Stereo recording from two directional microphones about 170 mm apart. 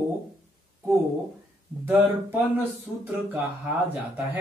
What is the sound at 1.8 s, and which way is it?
Speech, 10° right (ahead or behind).